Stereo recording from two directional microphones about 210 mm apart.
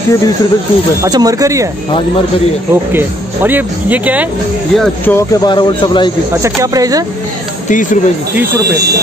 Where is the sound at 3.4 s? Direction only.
10° right (ahead or behind).